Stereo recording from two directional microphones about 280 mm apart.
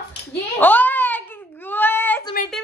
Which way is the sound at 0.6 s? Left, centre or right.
Centre.